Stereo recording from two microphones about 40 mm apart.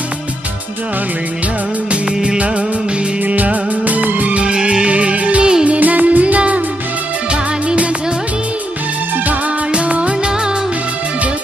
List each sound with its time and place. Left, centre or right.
2.2 s music: right
3.3 s music of bollywood: right
4.4 s music: right
4.8 s music: right
5.4 s music: right
5.7 s music: right
9.7 s music: right